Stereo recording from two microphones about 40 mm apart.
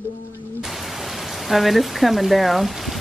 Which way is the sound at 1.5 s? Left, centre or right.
Centre.